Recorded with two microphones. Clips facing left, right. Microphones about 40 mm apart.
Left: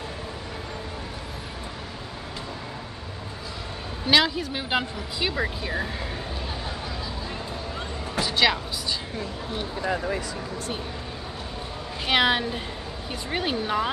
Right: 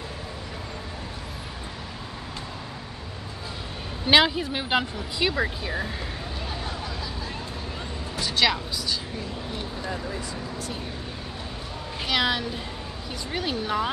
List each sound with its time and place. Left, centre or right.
4.1 s speech: centre
8.2 s speech: centre
9.8 s speech: left
12.1 s speech: left